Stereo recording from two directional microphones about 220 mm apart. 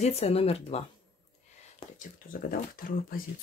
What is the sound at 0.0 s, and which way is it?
Speech, 30° left (ahead or behind).